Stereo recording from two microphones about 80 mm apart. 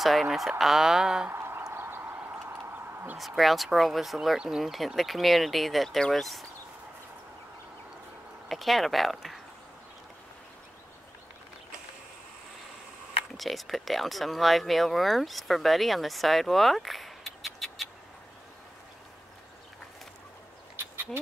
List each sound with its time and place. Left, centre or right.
0.0 s speech: centre
1.3 s a sound: right
3.2 s speech: centre
8.5 s speech: centre
13.4 s speech: centre
20.7 s a sound: right